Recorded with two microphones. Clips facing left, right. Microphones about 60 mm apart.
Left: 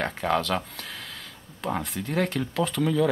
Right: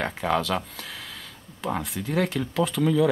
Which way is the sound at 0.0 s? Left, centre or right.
Centre.